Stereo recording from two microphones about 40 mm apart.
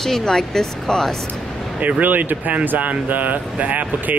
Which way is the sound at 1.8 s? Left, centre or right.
Right.